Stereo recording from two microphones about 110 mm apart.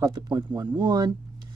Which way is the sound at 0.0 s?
40° right (ahead or behind).